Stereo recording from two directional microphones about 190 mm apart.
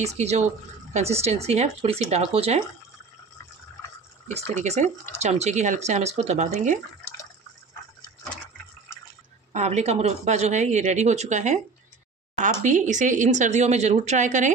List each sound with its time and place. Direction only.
0.0 s speech: 35° right (ahead or behind)
4.4 s speech: 35° right (ahead or behind)
9.5 s speech: 35° right (ahead or behind)
12.6 s speech: 40° right (ahead or behind)